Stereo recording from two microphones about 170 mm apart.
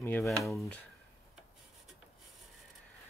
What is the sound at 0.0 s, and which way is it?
Speech, 15° left (ahead or behind).